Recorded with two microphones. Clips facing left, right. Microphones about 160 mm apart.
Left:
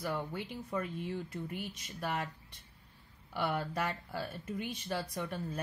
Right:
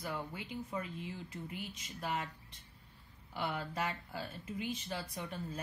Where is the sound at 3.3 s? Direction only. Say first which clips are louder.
Left 4 dB; 60° left (ahead or behind).